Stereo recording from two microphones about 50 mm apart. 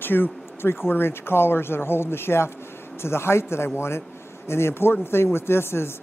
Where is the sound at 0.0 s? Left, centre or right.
Left.